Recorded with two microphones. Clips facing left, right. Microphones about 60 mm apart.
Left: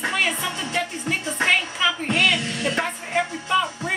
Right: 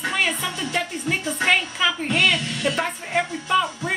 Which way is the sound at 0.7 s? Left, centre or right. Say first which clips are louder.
Right 1 dB; centre.